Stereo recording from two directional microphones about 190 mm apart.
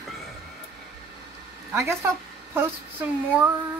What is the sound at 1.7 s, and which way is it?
A woman's voice, 15° right (ahead or behind).